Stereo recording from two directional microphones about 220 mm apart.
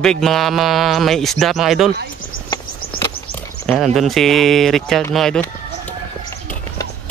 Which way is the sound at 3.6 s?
Centre (ahead or behind).